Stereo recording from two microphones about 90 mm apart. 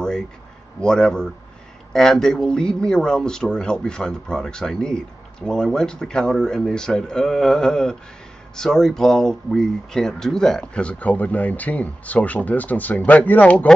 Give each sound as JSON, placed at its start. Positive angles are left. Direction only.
{"t": 0.7, "sound": "speech", "side_deg": 10}